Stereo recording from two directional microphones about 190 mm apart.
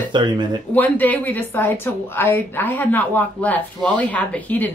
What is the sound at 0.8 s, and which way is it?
Speech, 10° left (ahead or behind).